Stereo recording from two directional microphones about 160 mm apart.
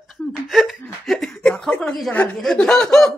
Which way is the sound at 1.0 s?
5° left (ahead or behind).